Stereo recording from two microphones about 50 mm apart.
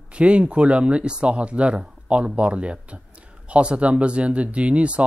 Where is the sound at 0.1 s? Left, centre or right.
Right.